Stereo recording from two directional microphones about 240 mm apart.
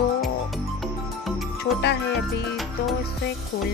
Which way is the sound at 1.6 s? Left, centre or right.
Left.